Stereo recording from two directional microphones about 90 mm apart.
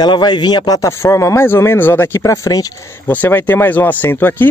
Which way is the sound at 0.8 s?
30° left (ahead or behind).